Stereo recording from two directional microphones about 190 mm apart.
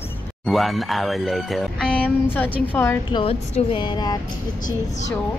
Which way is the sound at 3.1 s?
30° left (ahead or behind).